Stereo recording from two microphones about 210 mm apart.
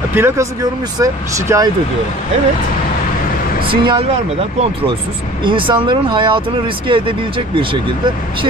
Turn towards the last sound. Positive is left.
turn(degrees=-25)  # may be behind; listen again after turning